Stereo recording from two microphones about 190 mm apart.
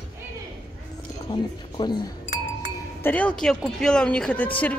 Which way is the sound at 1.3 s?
25° left (ahead or behind).